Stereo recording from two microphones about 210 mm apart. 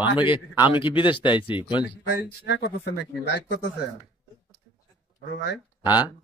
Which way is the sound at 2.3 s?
50° left (ahead or behind).